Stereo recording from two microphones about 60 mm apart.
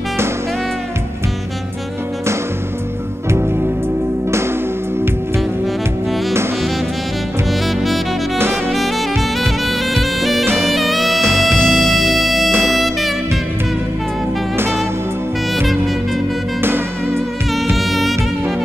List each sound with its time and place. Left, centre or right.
3.3 s music: right
7.6 s saxophone: centre
8.4 s saxophone: right
8.7 s saxophone: centre
9.2 s music: centre
11.2 s music: right
11.7 s music: centre
12.4 s music: right
14.6 s music: right
16.6 s music: right
17.7 s music: centre